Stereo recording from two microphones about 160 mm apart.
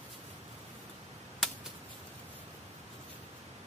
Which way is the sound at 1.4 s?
Centre (ahead or behind).